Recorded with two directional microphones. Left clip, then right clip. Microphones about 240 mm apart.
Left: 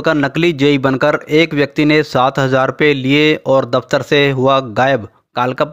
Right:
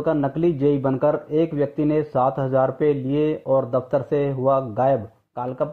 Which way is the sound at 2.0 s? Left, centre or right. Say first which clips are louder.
Left 8 dB; left.